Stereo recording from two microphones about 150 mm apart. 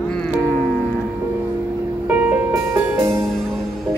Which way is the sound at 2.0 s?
10° right (ahead or behind).